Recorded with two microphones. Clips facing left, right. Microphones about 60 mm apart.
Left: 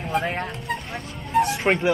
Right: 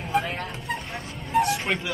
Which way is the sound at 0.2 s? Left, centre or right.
Left.